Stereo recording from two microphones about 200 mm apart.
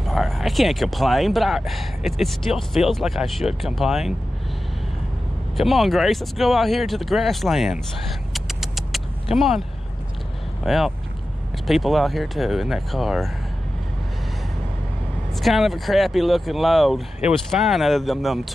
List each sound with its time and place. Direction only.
0.0 s speech: centre (ahead or behind)
5.6 s speech: centre (ahead or behind)
8.3 s vehicle: centre (ahead or behind)
10.6 s speech: centre (ahead or behind)
15.4 s speech: centre (ahead or behind)